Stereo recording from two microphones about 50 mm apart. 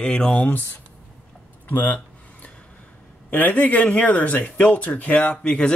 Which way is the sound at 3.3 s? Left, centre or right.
Left.